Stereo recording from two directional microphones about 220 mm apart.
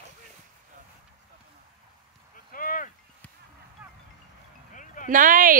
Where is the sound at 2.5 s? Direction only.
40° left (ahead or behind).